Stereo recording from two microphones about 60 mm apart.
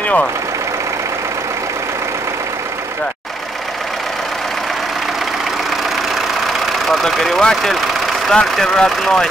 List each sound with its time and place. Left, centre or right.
0.0 s vehicle: left
6.9 s speech: centre